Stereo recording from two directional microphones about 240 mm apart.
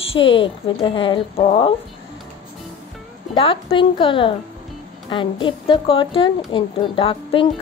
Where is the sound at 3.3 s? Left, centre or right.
Left.